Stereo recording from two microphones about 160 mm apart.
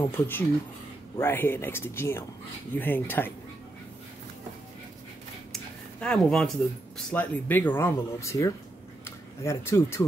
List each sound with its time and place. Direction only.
0.0 s speech: 15° left (ahead or behind)
5.5 s a sound: 5° left (ahead or behind)
7.1 s speech: 10° left (ahead or behind)